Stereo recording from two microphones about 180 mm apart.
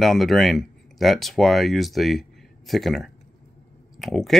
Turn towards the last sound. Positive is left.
turn(degrees=0)  # may be behind; listen again after turning